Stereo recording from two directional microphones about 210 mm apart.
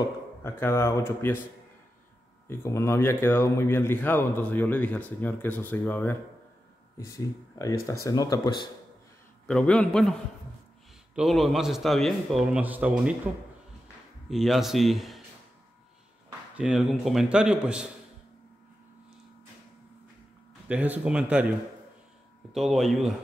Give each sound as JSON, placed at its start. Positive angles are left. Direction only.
{"t": 0.4, "sound": "speech", "side_deg": 10}
{"t": 2.4, "sound": "speech", "side_deg": 10}
{"t": 9.5, "sound": "a man's voice", "side_deg": 5}
{"t": 11.1, "sound": "a man's voice", "side_deg": 0}
{"t": 14.3, "sound": "a man's voice", "side_deg": 0}
{"t": 16.5, "sound": "a man's voice", "side_deg": -5}
{"t": 20.6, "sound": "a man's voice", "side_deg": -5}
{"t": 22.5, "sound": "a man's voice", "side_deg": 0}